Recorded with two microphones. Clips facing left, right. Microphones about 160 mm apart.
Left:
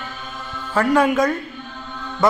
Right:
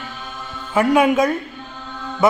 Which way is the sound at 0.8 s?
15° right (ahead or behind).